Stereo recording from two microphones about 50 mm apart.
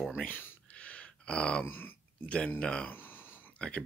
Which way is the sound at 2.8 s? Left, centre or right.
Left.